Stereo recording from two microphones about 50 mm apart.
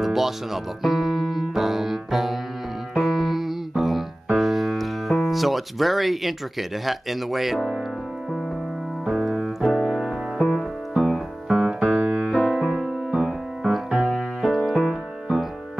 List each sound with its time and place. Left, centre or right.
0.0 s music: centre
6.9 s speech: centre
9.0 s piano: centre
10.4 s music: centre
11.8 s music: right
12.3 s keyboard: centre
12.6 s music: centre